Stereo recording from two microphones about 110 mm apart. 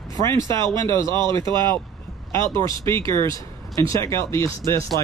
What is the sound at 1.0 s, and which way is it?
Speech, 40° right (ahead or behind).